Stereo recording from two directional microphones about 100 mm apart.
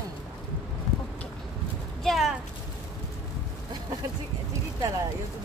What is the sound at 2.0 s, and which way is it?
Speech, centre (ahead or behind).